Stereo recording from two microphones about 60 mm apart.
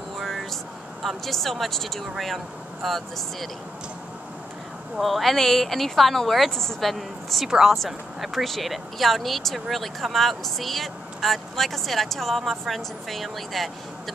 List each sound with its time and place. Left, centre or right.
0.2 s vehicle: centre
1.0 s speech: centre
4.9 s speech: centre